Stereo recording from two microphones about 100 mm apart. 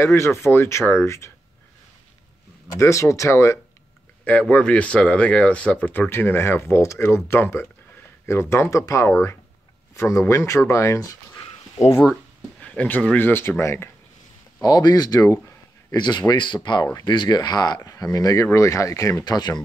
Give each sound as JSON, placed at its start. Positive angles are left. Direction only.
{"t": 0.0, "sound": "speech", "side_deg": 25}
{"t": 2.7, "sound": "speech", "side_deg": 30}
{"t": 4.2, "sound": "speech", "side_deg": 15}
{"t": 12.1, "sound": "a sound", "side_deg": 10}
{"t": 13.2, "sound": "speech", "side_deg": 25}
{"t": 14.6, "sound": "speech", "side_deg": 45}